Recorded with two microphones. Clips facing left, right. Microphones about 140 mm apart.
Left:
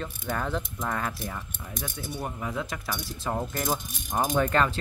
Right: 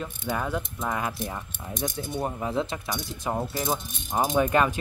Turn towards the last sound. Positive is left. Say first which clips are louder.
# right 2 dB
turn(degrees=-15)  # may be behind; listen again after turning